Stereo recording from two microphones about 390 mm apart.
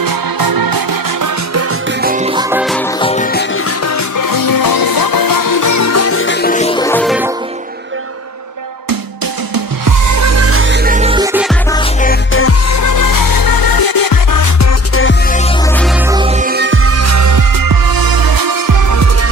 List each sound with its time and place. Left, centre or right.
0.0 s music: right
2.0 s music: centre
3.0 s music: centre
3.8 s music: left; by 7.2 s centre
9.8 s music: right; by 11.5 s centre
11.7 s music: centre
12.8 s music: left
16.1 s music: centre; by 19.0 s right